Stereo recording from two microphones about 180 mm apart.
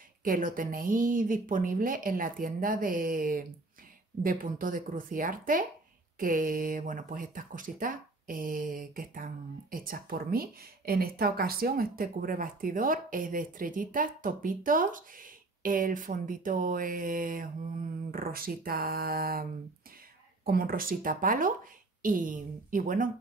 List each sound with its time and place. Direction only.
0.2 s speech: 50° right (ahead or behind)
20.4 s speech: 55° right (ahead or behind)